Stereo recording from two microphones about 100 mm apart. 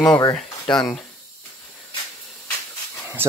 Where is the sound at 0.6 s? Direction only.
45° left (ahead or behind).